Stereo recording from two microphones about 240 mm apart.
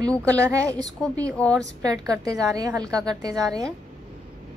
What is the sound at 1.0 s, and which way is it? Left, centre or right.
Speech, centre.